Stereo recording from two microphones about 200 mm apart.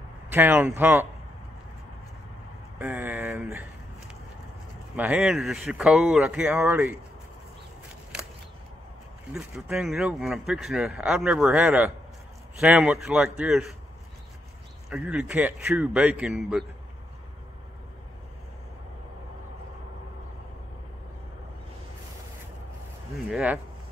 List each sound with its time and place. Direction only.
0.3 s a man's voice: 10° right (ahead or behind)
2.8 s a man's voice: 10° right (ahead or behind)
4.9 s speech: 5° right (ahead or behind)
9.3 s speech: 5° right (ahead or behind)
14.9 s a man's voice: 5° right (ahead or behind)
23.3 s a man's voice: 5° right (ahead or behind)